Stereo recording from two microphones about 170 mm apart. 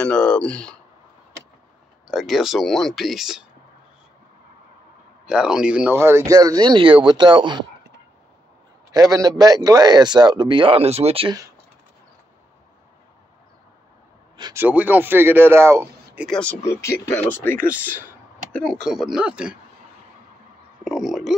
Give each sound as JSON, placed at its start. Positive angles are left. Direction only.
{"t": 0.0, "sound": "speech", "side_deg": 5}
{"t": 2.0, "sound": "speech", "side_deg": 0}
{"t": 5.2, "sound": "speech", "side_deg": -5}
{"t": 8.9, "sound": "speech", "side_deg": -20}
{"t": 14.5, "sound": "speech", "side_deg": -10}
{"t": 16.3, "sound": "speech", "side_deg": 5}
{"t": 17.7, "sound": "speech", "side_deg": -10}
{"t": 18.5, "sound": "speech", "side_deg": 5}
{"t": 20.8, "sound": "a sound", "side_deg": 0}